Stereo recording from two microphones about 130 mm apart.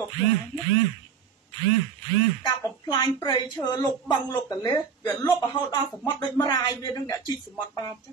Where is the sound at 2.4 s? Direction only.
30° left (ahead or behind).